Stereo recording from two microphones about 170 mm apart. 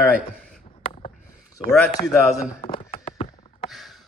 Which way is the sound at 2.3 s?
35° left (ahead or behind).